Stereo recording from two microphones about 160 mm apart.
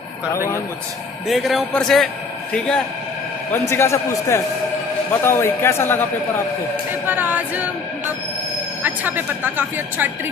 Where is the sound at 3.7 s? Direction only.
15° left (ahead or behind).